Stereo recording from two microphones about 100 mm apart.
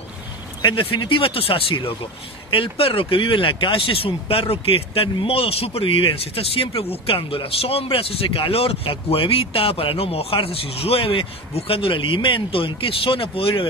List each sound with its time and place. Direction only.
0.6 s a man's voice: 55° left (ahead or behind)